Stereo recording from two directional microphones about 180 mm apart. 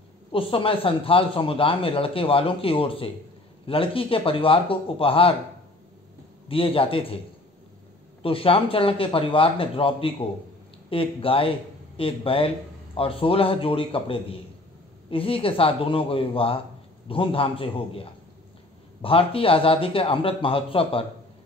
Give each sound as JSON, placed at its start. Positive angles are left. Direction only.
{"t": 0.3, "sound": "a man's voice", "side_deg": 30}
{"t": 6.5, "sound": "a man's voice", "side_deg": 30}
{"t": 8.2, "sound": "a man's voice", "side_deg": 30}